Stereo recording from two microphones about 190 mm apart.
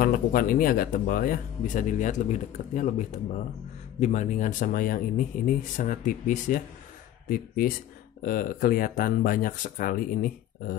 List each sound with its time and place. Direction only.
0.0 s speech: 50° left (ahead or behind)